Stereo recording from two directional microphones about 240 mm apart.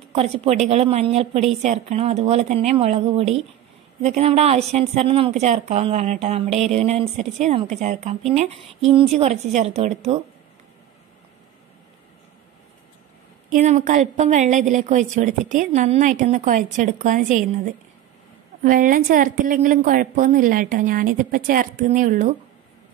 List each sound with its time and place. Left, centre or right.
0.1 s a woman's voice: right
13.5 s a woman's voice: right